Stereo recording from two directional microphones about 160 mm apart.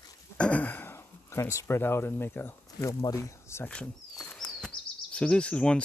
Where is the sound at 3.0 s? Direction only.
20° left (ahead or behind).